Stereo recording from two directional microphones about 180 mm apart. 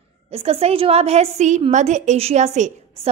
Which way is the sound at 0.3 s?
35° right (ahead or behind).